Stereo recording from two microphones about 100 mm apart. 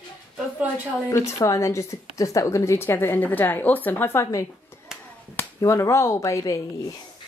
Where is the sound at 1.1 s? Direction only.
30° left (ahead or behind).